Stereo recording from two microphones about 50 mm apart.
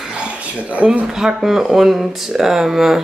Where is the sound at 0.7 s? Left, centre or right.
Right.